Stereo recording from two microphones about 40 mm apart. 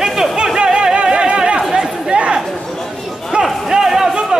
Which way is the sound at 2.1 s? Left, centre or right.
Right.